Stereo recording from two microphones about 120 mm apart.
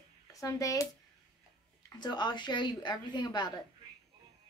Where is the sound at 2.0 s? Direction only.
40° left (ahead or behind).